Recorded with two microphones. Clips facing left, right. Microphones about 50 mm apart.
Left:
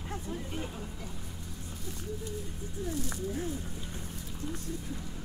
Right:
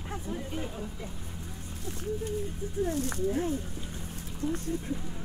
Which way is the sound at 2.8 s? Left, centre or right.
Right.